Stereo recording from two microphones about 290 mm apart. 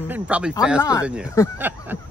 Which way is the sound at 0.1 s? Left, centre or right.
Centre.